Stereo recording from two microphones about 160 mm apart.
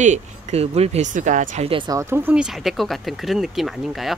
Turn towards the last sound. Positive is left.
turn(degrees=0)  # may be behind; listen again after turning